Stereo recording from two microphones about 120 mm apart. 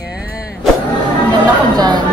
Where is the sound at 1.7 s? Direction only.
35° right (ahead or behind).